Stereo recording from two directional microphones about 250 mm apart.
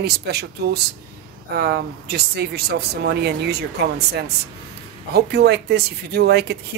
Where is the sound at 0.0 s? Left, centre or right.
Right.